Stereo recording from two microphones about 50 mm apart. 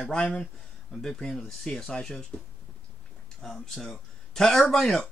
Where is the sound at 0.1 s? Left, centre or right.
Centre.